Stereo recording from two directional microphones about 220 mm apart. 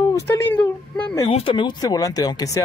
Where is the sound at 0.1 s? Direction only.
10° left (ahead or behind).